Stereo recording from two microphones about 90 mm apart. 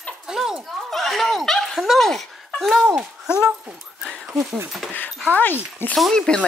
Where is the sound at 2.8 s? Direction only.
10° right (ahead or behind).